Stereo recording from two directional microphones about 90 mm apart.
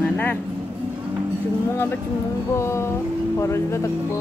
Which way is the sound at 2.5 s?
30° left (ahead or behind).